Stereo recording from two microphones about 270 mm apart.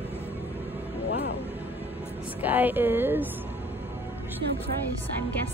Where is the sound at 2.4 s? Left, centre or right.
Centre.